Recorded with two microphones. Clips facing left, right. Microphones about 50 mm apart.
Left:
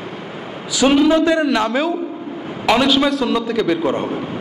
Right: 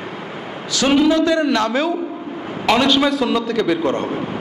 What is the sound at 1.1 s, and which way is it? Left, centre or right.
Speech, left.